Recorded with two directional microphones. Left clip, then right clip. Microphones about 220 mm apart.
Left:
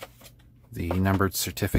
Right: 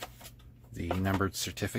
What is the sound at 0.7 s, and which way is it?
Speech, 30° left (ahead or behind).